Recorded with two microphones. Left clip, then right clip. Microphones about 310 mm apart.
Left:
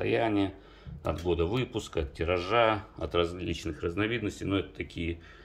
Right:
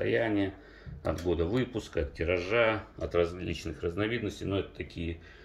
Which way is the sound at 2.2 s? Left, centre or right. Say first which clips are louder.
Left 2 dB; centre.